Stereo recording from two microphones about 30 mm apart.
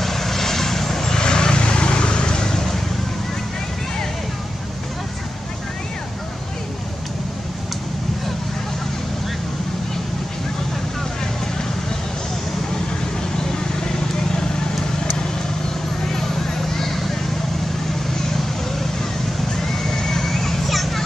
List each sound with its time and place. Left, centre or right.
0.0 s vehicle: centre
1.1 s vehicle: left
13.5 s vehicle: centre
16.1 s vehicle: centre
19.6 s a sound: centre
20.6 s children playing: centre